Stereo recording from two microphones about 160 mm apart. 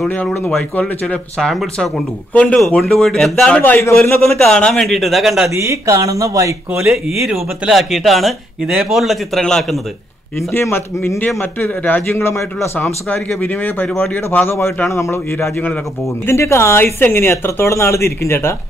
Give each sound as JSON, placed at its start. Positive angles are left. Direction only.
{"t": 0.0, "sound": "speech", "side_deg": 10}
{"t": 5.6, "sound": "speech", "side_deg": -20}
{"t": 7.2, "sound": "speech", "side_deg": -5}
{"t": 10.5, "sound": "speech", "side_deg": 15}